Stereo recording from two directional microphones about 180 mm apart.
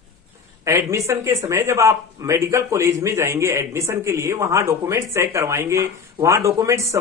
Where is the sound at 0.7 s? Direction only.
15° right (ahead or behind).